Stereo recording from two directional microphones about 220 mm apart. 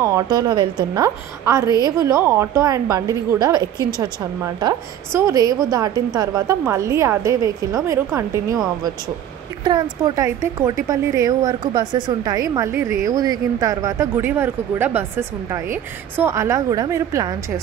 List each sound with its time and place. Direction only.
0.0 s a woman's voice: 15° right (ahead or behind)
9.7 s a woman's voice: 20° right (ahead or behind)